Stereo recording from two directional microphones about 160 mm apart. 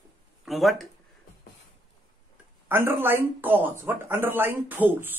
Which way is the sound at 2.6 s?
15° right (ahead or behind).